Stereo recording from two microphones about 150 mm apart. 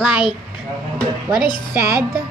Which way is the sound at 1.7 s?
20° right (ahead or behind).